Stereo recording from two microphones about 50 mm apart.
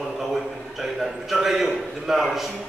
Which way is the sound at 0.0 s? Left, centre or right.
Centre.